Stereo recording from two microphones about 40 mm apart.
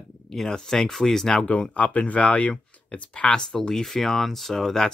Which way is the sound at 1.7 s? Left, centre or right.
Left.